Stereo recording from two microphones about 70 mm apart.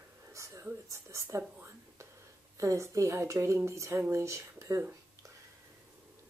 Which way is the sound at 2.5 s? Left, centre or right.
Right.